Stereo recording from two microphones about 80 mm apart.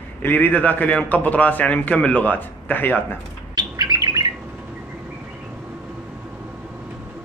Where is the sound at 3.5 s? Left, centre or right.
Right.